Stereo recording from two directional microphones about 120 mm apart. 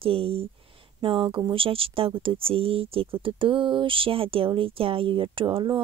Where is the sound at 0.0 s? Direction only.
50° right (ahead or behind).